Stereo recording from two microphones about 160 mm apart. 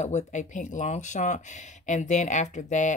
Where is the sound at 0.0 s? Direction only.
45° left (ahead or behind).